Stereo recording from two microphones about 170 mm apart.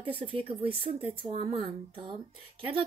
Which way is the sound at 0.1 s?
30° right (ahead or behind).